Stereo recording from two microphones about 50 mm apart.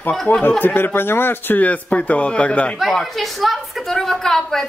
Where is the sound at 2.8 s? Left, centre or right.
Centre.